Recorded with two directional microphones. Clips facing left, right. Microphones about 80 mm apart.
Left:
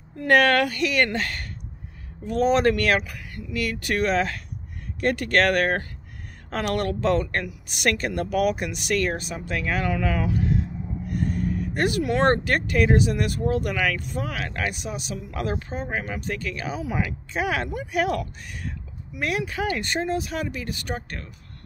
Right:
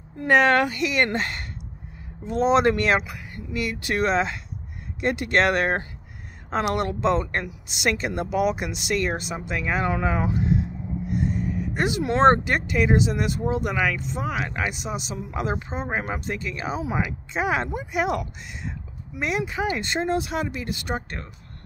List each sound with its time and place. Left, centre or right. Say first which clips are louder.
0.3 s speech: even; right
11.2 s a sound: left 4 dB; right
11.5 s vehicle: left 1 dB; centre
12.0 s speech: right 4 dB; right
12.4 s speech: left 1 dB; centre; by 17.8 s right
17.9 s speech: left 1 dB; centre